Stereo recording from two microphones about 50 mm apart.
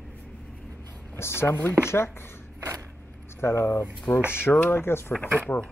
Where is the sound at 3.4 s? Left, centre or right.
Left.